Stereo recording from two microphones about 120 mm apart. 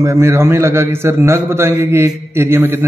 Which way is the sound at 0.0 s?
20° right (ahead or behind).